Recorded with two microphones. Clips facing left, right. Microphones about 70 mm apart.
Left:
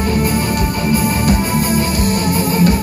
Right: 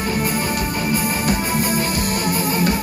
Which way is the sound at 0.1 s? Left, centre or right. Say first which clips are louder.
Left 4 dB; centre.